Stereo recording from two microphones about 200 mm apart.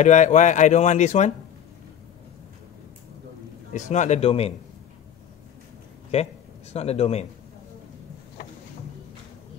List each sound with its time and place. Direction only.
0.0 s speech: 35° left (ahead or behind)
3.7 s speech: 35° left (ahead or behind)
6.1 s a man's voice: 30° left (ahead or behind)